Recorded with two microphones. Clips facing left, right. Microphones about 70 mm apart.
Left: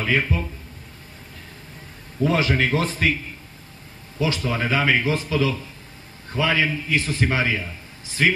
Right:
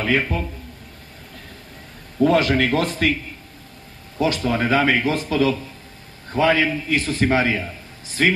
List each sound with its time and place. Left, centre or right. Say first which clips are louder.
0.3 s a sound: right 1 dB; right
2.1 s speech: right 4 dB; right
4.2 s speech: right 3 dB; right